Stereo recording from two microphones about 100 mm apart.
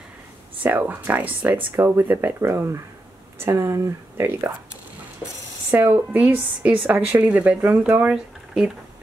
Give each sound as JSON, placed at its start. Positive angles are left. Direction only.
{"t": 0.6, "sound": "a woman's voice", "side_deg": -20}
{"t": 5.7, "sound": "a woman's voice", "side_deg": -20}